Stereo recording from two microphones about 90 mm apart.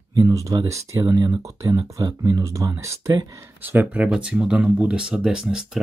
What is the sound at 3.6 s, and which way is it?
Speech, 20° right (ahead or behind).